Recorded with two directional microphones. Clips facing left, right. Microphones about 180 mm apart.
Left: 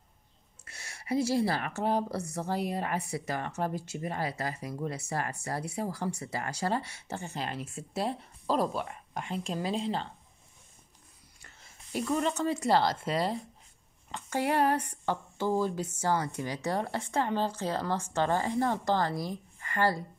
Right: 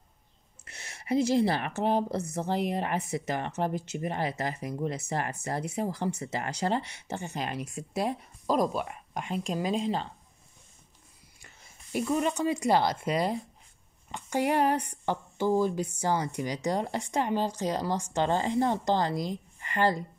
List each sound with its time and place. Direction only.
0.7 s speech: 20° right (ahead or behind)
11.4 s speech: 15° right (ahead or behind)